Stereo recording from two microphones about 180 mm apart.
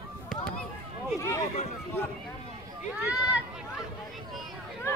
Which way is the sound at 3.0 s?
10° right (ahead or behind).